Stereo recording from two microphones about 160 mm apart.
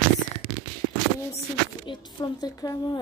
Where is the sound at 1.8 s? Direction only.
25° left (ahead or behind).